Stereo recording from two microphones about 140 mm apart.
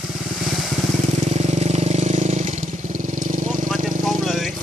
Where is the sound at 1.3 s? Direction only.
55° right (ahead or behind).